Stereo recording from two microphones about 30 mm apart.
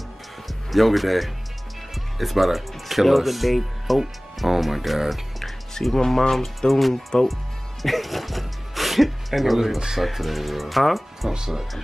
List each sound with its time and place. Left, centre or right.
0.7 s speech: centre
5.4 s music: centre
5.9 s speech: centre
7.8 s speech: centre
11.3 s speech: centre